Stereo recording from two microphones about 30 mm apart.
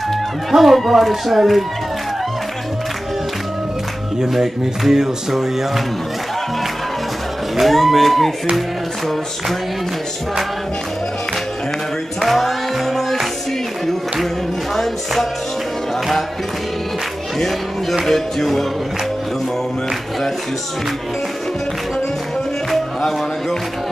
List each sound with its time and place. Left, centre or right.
0.5 s speech: centre
4.4 s music: centre
7.6 s speech: centre
12.2 s music: centre
18.0 s speech: centre